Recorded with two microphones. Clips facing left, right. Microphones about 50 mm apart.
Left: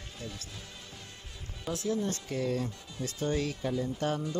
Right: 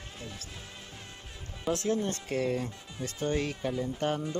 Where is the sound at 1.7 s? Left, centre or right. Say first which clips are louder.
Right 2 dB; right.